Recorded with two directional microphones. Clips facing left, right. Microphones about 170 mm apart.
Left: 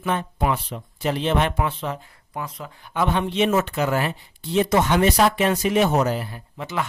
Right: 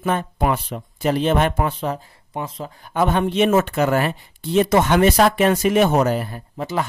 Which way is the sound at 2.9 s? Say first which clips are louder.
Right 3 dB; 50° right (ahead or behind).